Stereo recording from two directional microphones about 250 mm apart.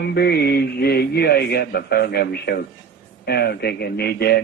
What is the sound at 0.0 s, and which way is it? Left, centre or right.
Speech, left.